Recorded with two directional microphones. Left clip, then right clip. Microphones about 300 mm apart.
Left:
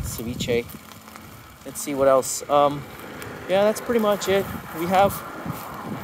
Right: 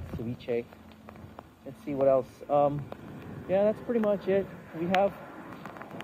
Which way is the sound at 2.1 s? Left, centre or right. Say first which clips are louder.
Left 7 dB; left.